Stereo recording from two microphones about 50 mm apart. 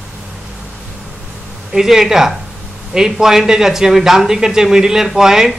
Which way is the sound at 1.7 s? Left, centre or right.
Centre.